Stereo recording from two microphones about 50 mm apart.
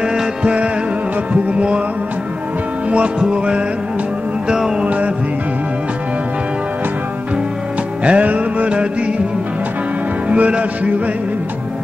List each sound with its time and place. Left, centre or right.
0.0 s music: centre
3.2 s music: centre
4.8 s music: right
8.0 s music: right
10.3 s music: right